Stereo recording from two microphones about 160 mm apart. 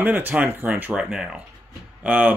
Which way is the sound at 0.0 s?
10° right (ahead or behind).